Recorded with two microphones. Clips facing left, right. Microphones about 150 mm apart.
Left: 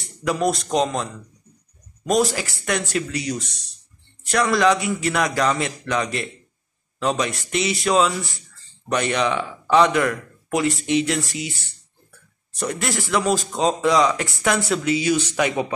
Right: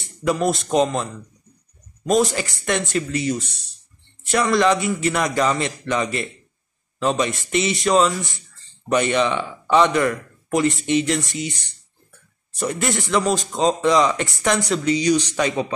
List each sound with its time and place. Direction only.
0.0 s speech: centre (ahead or behind)
3.3 s speech: 30° right (ahead or behind)
4.2 s speech: centre (ahead or behind)
12.5 s speech: centre (ahead or behind)